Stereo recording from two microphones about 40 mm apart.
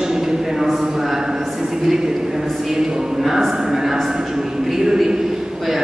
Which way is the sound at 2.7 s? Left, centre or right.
Centre.